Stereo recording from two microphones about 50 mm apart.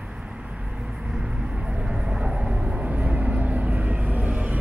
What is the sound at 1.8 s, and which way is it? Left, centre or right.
Vehicle, centre.